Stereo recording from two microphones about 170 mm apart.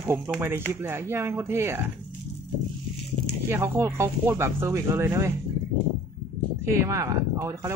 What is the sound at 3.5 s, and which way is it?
Speech, 15° right (ahead or behind).